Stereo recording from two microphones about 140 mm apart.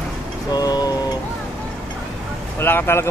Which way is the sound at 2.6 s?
15° left (ahead or behind).